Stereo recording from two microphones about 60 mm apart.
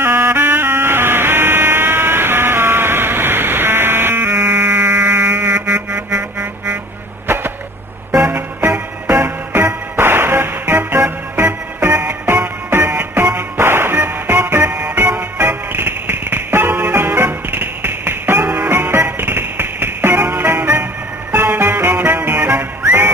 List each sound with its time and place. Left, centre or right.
0.0 s music: right
8.3 s music: right